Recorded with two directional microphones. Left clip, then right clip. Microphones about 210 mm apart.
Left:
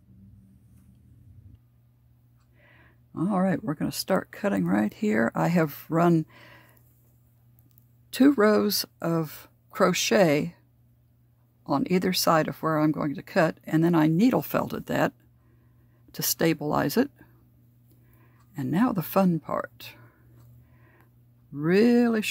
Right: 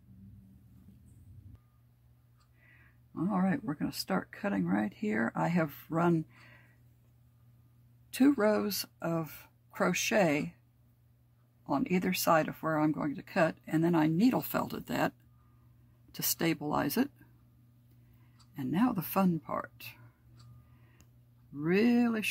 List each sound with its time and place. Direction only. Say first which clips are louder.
2.8 s speech: left 6 dB; 50° left (ahead or behind)
8.1 s speech: left 7 dB; 45° left (ahead or behind)
11.6 s speech: left 6 dB; 50° left (ahead or behind)
18.5 s speech: left 5 dB; 45° left (ahead or behind)
21.5 s speech: left 7 dB; 45° left (ahead or behind)